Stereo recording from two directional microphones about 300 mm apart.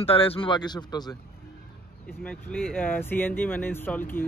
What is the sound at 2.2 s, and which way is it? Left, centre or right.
Speech, centre.